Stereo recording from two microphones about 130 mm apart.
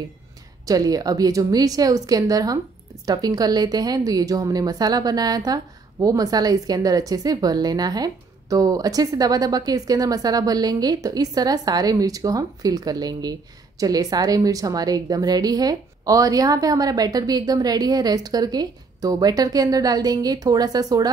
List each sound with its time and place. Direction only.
0.7 s a woman's voice: 30° right (ahead or behind)